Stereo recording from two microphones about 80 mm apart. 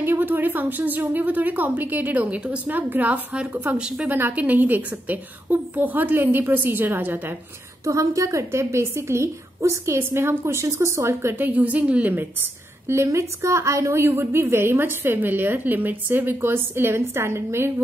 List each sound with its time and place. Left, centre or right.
0.0 s a woman's voice: right
4.1 s a woman's voice: right
7.8 s a woman's voice: right